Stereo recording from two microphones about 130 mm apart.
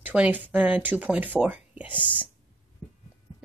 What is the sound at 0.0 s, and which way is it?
Speech, 10° right (ahead or behind).